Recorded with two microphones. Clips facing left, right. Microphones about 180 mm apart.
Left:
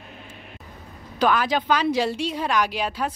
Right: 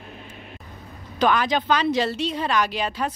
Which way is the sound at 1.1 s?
5° left (ahead or behind).